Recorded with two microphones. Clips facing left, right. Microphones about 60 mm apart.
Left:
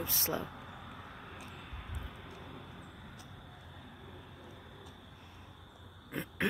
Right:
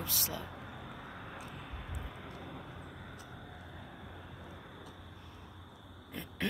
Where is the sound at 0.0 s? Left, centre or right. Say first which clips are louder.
Left 4 dB; left.